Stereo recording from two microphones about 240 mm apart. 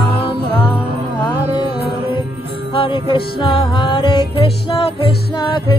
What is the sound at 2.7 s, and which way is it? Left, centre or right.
Music, left.